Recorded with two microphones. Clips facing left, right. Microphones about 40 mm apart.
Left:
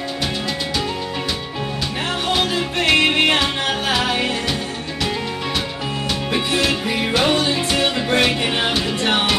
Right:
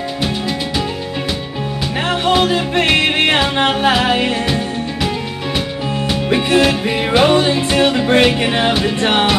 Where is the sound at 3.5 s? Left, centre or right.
Right.